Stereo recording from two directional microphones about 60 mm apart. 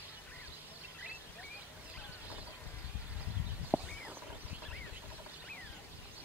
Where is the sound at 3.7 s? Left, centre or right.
Right.